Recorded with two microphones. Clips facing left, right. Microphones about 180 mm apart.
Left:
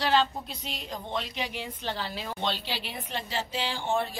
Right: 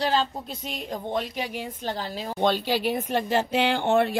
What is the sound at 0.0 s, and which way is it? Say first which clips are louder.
A woman's voice: right 1 dB; 40° right (ahead or behind).